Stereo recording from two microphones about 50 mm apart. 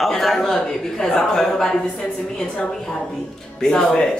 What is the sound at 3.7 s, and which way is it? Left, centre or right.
Speech, centre.